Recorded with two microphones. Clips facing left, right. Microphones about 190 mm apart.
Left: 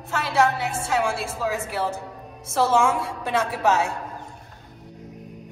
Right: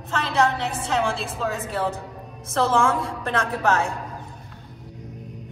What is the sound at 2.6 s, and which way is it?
A woman's voice, 15° left (ahead or behind).